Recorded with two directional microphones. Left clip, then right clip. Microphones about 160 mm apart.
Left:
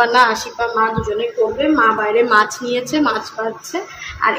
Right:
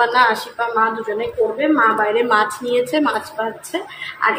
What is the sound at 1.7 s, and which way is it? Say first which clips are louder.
A woman's voice: left 2 dB; 15° left (ahead or behind).